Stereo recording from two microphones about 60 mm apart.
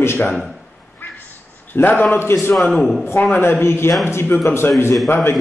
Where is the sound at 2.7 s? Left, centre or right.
Centre.